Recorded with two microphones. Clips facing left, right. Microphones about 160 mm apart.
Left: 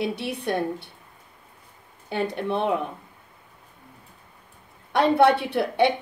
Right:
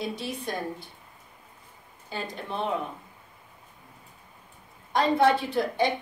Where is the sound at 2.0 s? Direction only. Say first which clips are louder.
Left 9 dB; 65° left (ahead or behind).